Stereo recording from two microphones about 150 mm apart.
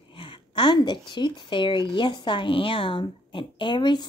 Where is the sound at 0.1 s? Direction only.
35° left (ahead or behind).